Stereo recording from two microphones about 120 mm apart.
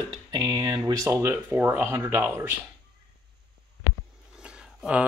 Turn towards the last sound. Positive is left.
turn(degrees=-10)  # may be behind; listen again after turning